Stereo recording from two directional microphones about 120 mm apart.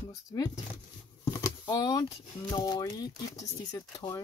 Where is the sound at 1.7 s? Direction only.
35° left (ahead or behind).